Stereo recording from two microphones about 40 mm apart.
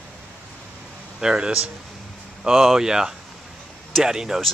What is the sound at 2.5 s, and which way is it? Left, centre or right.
Speech, centre.